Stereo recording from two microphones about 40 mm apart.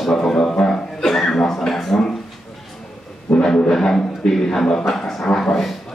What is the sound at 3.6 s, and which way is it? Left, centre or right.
A man's voice, centre.